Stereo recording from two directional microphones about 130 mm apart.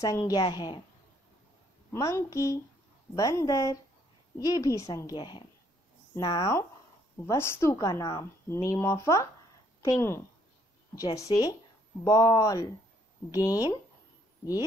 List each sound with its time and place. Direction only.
0.2 s a woman's voice: 35° left (ahead or behind)
1.9 s a woman's voice: 20° left (ahead or behind)
7.2 s a woman's voice: 20° left (ahead or behind)